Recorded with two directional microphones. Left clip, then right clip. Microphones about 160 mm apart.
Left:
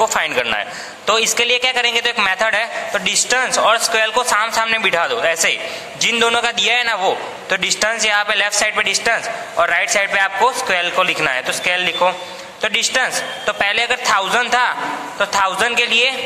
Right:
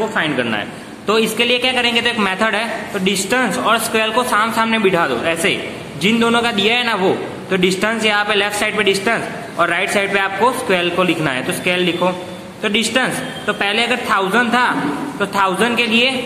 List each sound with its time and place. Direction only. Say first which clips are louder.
0.1 s a man's voice: left 1 dB; 55° left (ahead or behind)
0.5 s a man's voice: left 2 dB; 30° left (ahead or behind)